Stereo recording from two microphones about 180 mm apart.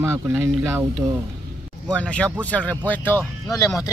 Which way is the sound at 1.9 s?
5° left (ahead or behind).